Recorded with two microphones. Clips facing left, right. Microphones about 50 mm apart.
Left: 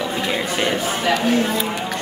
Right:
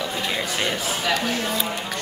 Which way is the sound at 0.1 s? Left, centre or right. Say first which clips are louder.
Left 4 dB; centre.